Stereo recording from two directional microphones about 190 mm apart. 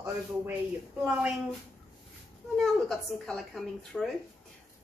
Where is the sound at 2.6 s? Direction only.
Centre (ahead or behind).